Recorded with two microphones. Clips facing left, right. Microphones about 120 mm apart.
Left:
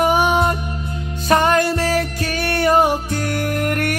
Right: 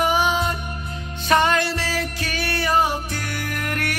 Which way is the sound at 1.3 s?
40° left (ahead or behind).